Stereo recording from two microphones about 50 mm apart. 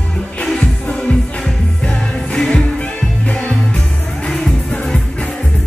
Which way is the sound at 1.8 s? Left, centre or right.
Centre.